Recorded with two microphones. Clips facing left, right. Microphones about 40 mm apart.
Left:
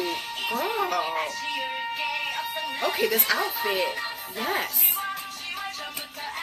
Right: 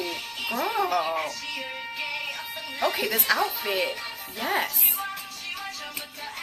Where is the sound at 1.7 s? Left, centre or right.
Centre.